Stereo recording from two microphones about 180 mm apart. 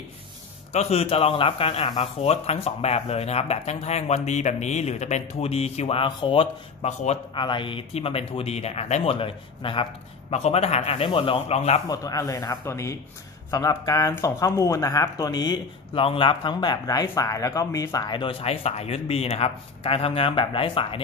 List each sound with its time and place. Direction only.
0.7 s speech: 35° left (ahead or behind)
11.9 s speech: 20° left (ahead or behind)